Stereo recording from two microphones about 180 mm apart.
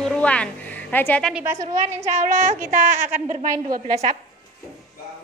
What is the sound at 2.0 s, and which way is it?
A woman's voice, 40° right (ahead or behind).